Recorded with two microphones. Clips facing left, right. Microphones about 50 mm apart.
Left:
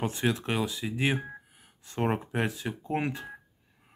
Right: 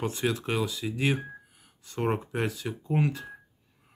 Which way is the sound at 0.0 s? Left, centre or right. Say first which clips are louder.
Even; centre.